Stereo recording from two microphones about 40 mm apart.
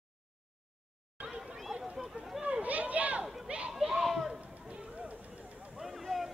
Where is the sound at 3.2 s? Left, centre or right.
Centre.